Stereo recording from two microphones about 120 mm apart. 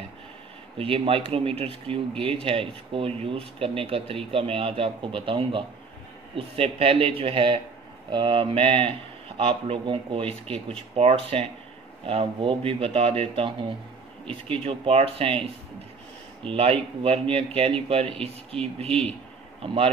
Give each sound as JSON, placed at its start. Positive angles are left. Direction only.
{"t": 0.7, "sound": "speech", "side_deg": -50}